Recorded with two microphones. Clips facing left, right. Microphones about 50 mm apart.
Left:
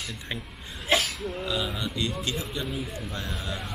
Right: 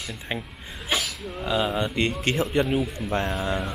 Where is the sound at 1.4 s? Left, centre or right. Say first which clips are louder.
Right 6 dB; right.